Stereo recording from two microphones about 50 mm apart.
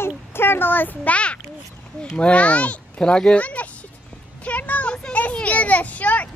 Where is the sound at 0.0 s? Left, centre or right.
Left.